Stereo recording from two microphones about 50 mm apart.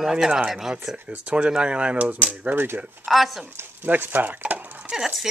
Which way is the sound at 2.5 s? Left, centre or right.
Right.